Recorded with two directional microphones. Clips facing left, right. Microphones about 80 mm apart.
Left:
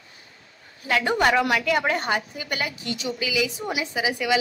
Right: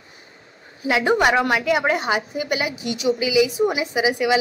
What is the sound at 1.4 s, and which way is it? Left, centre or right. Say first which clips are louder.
Speech: right 2 dB; right.